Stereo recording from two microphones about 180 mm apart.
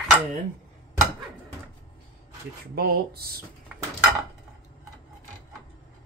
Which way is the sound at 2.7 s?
60° right (ahead or behind).